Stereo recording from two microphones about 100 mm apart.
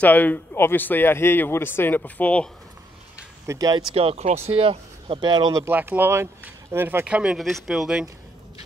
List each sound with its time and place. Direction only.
0.0 s speech: 15° left (ahead or behind)
3.4 s speech: 40° right (ahead or behind)
3.9 s speech: 85° right
4.5 s speech: 70° right (ahead or behind)
5.3 s speech: 40° right (ahead or behind)
5.7 s speech: 20° right (ahead or behind)
7.3 s speech: centre (ahead or behind)